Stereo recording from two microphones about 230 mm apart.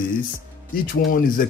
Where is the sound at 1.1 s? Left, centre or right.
Left.